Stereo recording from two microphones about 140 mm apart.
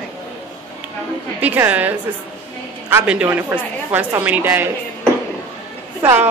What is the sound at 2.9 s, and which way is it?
A woman's voice, 10° right (ahead or behind).